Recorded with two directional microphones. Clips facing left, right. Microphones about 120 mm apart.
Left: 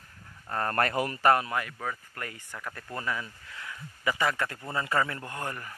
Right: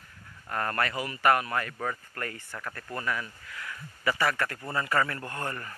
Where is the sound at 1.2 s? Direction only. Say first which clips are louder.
Even; 30° left (ahead or behind).